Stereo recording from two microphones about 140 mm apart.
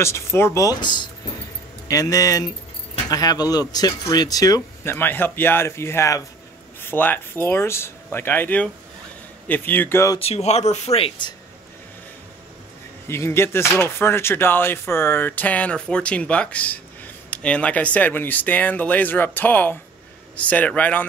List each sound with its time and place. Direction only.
0.0 s speech: 20° left (ahead or behind)
10.1 s speech: 45° left (ahead or behind)
13.0 s speech: 15° left (ahead or behind)